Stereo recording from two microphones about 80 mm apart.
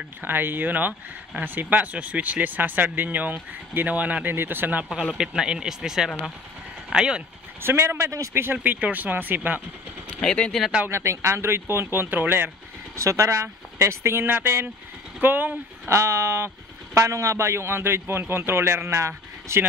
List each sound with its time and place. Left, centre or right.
0.2 s speech: right
5.1 s speech: centre
7.6 s speech: right
8.5 s speech: right
10.2 s speech: centre
10.9 s speech: right
12.9 s speech: right
15.9 s speech: right